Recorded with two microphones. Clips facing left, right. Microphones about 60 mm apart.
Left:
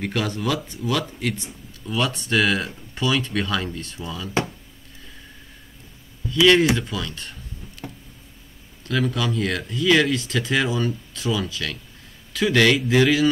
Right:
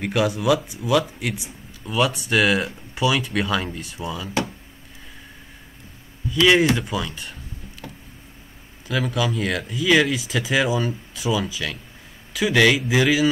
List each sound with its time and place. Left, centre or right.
0.0 s speech: centre
6.2 s a sound: right
6.8 s speech: centre
8.8 s speech: centre